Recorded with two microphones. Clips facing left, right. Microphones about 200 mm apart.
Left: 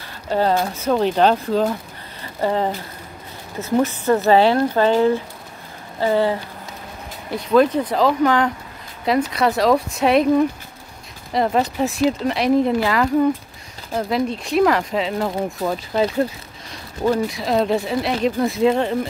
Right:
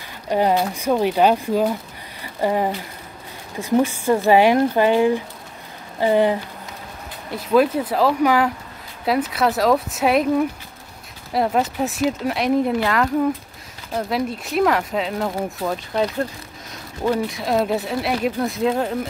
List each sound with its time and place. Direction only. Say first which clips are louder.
0.3 s speech: even; 15° right (ahead or behind)
7.2 s speech: left 1 dB; 5° right (ahead or behind)